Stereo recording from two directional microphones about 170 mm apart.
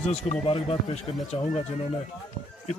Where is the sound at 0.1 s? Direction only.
35° left (ahead or behind).